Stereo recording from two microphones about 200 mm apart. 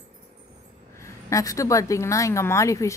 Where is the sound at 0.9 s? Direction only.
15° left (ahead or behind).